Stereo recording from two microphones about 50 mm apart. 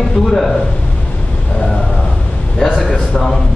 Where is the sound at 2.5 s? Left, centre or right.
Centre.